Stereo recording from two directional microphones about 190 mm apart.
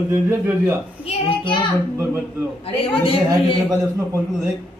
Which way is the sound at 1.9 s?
15° right (ahead or behind).